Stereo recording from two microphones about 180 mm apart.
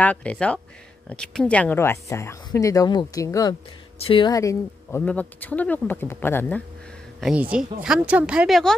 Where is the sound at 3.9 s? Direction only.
30° left (ahead or behind); by 6.6 s 10° left (ahead or behind).